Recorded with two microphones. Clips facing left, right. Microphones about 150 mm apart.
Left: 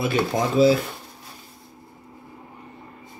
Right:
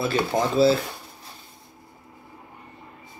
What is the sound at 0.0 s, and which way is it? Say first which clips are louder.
Speech: left 1 dB; 15° left (ahead or behind).